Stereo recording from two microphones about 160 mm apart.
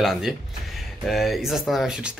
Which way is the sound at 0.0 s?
Centre (ahead or behind).